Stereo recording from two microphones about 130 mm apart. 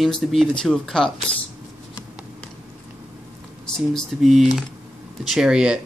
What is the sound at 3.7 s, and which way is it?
Speech, 5° left (ahead or behind).